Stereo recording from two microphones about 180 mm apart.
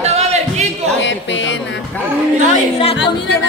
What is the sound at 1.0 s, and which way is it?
Speech, 90° left.